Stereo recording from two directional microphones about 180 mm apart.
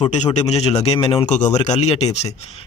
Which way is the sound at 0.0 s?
40° left (ahead or behind).